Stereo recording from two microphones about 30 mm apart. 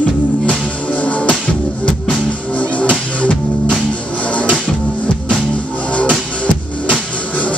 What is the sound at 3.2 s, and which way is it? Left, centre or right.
Music, left.